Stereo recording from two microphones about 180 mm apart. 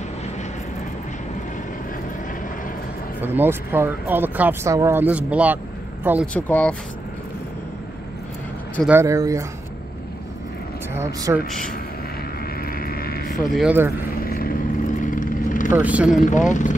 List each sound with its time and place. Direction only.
3.2 s speech: 10° right (ahead or behind)
6.3 s speech: 10° left (ahead or behind)
8.8 s speech: 15° right (ahead or behind)
10.9 s speech: 15° right (ahead or behind)
12.7 s a sound: 55° left (ahead or behind)
13.3 s speech: 5° right (ahead or behind)
14.2 s vehicle: 55° left (ahead or behind)
15.8 s speech: 10° right (ahead or behind)
16.1 s speech: 45° left (ahead or behind)